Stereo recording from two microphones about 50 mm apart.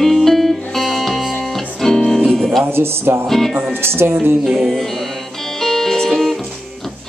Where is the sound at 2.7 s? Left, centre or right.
Right.